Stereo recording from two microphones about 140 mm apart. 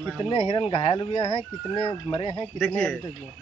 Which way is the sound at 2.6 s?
10° left (ahead or behind).